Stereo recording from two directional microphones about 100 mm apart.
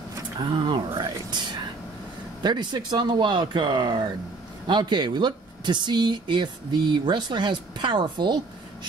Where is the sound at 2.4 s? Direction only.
45° right (ahead or behind).